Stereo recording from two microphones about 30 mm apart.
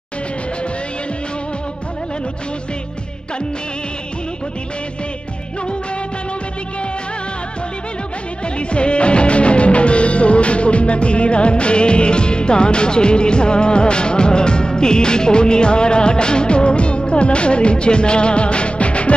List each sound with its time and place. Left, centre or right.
8.5 s music: left